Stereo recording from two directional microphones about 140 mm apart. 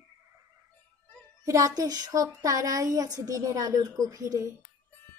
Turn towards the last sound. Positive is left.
turn(degrees=-20)  # may be behind; listen again after turning